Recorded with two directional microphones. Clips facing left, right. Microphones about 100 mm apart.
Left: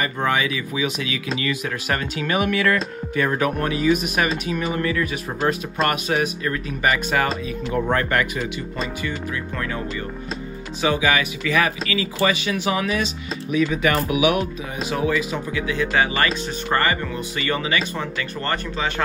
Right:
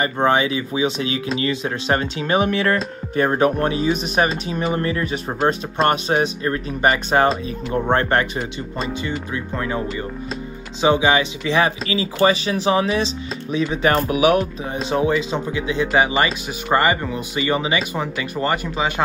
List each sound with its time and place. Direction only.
0.0 s speech: 30° right (ahead or behind)
10.8 s speech: 25° right (ahead or behind)
14.9 s speech: 30° right (ahead or behind)